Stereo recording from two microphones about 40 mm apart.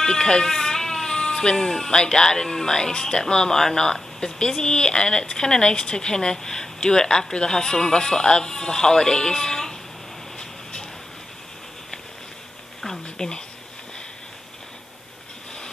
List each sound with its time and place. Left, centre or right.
0.0 s speech: centre
13.2 s speech: centre